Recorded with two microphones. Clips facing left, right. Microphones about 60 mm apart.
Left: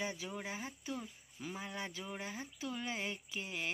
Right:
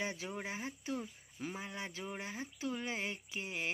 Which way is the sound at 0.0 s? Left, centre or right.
Right.